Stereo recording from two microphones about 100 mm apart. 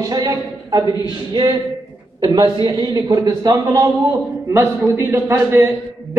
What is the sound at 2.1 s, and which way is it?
A woman's voice, 40° right (ahead or behind).